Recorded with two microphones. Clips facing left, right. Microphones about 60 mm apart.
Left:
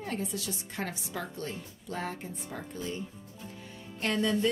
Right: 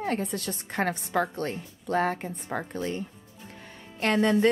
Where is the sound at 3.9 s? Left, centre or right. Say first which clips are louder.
Right 6 dB; right.